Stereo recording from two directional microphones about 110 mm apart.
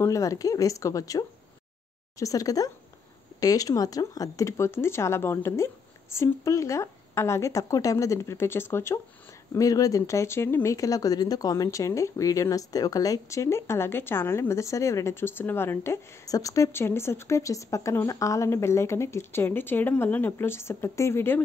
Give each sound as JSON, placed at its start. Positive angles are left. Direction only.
{"t": 0.0, "sound": "speech", "side_deg": 30}